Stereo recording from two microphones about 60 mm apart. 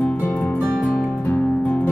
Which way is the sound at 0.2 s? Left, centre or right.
Left.